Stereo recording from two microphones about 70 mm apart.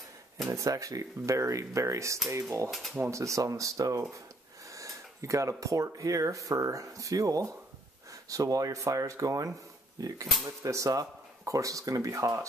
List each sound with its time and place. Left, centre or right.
0.5 s speech: right
2.7 s speech: centre
3.0 s speech: right
10.4 s speech: right